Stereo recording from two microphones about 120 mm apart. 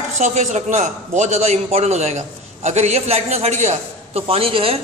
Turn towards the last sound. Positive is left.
turn(degrees=-55)  # may be behind; listen again after turning